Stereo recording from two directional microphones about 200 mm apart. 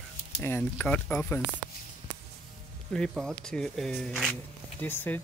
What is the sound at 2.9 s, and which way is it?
Speech, 5° left (ahead or behind).